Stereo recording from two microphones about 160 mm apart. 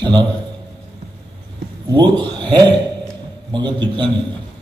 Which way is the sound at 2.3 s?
30° right (ahead or behind).